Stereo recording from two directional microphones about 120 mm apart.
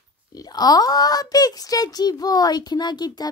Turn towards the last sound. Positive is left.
turn(degrees=35)  # may be behind; listen again after turning